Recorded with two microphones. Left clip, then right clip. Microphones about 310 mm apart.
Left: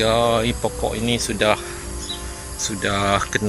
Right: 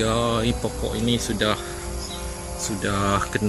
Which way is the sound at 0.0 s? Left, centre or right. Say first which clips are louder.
Left 5 dB; centre.